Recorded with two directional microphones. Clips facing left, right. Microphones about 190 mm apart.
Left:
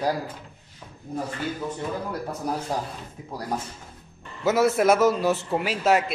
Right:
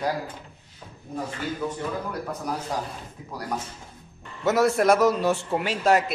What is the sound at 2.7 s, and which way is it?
Speech, 30° left (ahead or behind).